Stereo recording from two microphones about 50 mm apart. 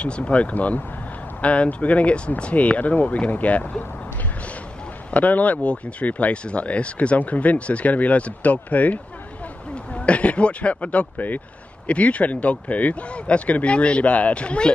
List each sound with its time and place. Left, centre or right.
0.0 s speech: left
5.1 s speech: left